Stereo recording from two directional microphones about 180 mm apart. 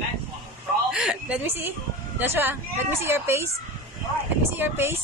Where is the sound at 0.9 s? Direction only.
5° right (ahead or behind).